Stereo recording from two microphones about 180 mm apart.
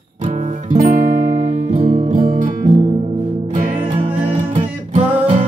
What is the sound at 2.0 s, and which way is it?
Music, 45° right (ahead or behind).